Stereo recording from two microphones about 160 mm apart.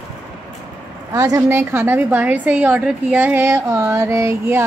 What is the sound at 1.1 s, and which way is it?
A woman's voice, 20° right (ahead or behind).